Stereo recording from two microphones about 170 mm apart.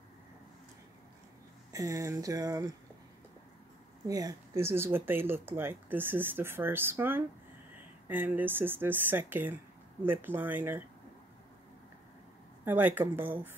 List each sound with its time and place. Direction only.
1.7 s speech: 20° right (ahead or behind)
4.1 s speech: 20° right (ahead or behind)
12.6 s speech: 10° right (ahead or behind)